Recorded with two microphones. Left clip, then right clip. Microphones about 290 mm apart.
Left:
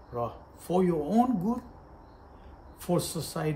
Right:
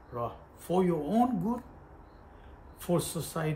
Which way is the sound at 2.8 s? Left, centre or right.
Centre.